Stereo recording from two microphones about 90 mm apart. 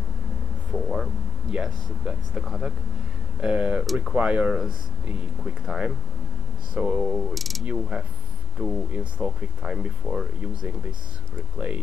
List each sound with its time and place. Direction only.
1.5 s speech: 10° right (ahead or behind)
3.8 s speech: centre (ahead or behind)
4.1 s speech: 15° right (ahead or behind)
7.3 s speech: centre (ahead or behind)
7.6 s speech: 10° right (ahead or behind)